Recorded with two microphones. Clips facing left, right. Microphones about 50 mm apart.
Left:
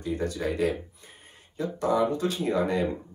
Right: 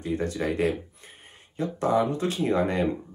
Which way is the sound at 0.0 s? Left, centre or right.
Right.